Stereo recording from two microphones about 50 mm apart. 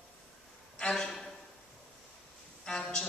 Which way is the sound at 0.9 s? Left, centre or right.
Centre.